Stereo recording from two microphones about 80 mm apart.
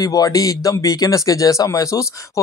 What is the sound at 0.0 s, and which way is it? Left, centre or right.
Speech, left.